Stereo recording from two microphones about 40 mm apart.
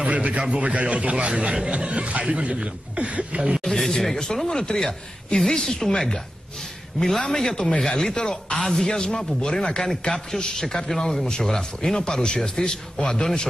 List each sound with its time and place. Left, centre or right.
0.0 s a man's voice: right
3.6 s a man's voice: centre
10.1 s a man's voice: centre